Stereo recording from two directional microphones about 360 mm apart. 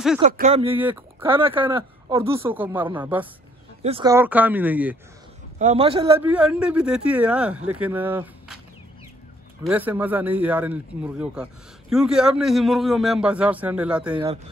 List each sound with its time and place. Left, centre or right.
0.2 s speech: centre
0.7 s speech: centre
5.6 s speech: centre
9.6 s speech: centre
14.1 s speech: centre